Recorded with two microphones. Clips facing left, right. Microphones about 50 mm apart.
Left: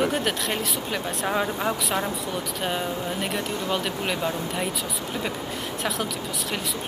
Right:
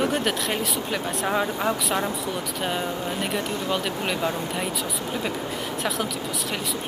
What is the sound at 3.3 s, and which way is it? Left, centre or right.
Speech, centre.